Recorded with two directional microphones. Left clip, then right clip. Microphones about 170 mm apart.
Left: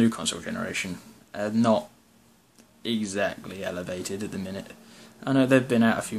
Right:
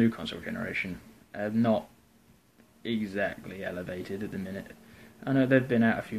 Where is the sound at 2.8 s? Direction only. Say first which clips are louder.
Left 4 dB; 15° left (ahead or behind).